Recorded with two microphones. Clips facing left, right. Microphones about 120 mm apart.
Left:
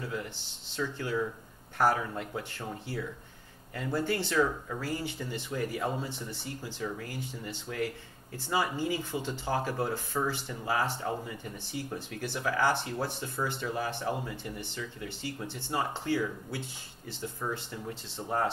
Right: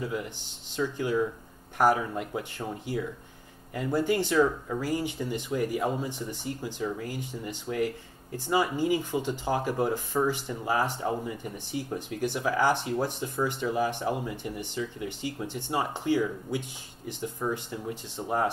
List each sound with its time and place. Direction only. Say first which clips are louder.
0.0 s speech: right 4 dB; 15° right (ahead or behind)